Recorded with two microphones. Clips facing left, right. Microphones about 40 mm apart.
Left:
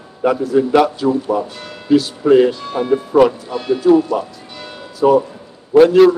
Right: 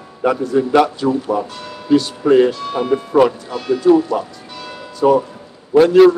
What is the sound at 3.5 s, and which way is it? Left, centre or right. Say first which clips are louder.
Speech: left 1 dB; left.